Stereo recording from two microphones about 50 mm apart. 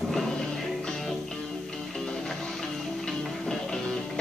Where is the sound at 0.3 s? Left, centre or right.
Centre.